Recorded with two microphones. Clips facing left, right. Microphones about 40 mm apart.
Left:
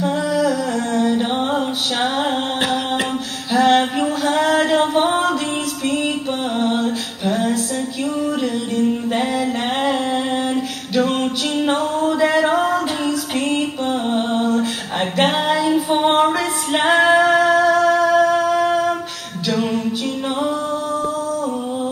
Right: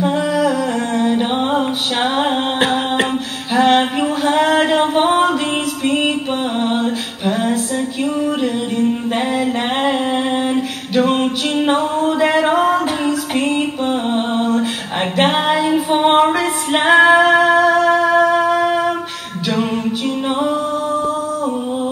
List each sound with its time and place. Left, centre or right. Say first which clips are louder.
0.0 s music: right 2 dB; right
8.4 s a sound: right 2 dB; right
11.0 s music: right 3 dB; right
17.2 s humming: right 2 dB; right
20.3 s singing: right 3 dB; right